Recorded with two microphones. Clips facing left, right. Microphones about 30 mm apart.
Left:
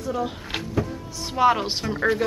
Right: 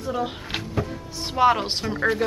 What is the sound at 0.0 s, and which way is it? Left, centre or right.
Speech, centre.